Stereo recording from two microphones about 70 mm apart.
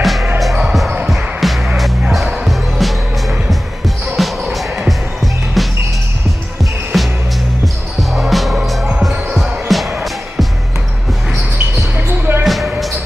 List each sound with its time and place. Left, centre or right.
0.0 s music: centre
12.1 s basketball bounce: right
12.4 s a sound: centre